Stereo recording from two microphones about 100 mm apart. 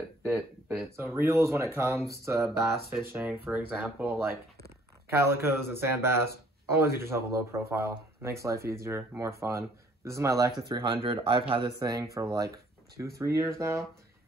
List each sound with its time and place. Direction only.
0.2 s a sound: 25° right (ahead or behind)
0.9 s speech: 25° right (ahead or behind)
2.4 s speech: centre (ahead or behind)
3.1 s speech: 20° right (ahead or behind)
10.7 s speech: 55° right (ahead or behind)
11.8 s speech: 35° right (ahead or behind)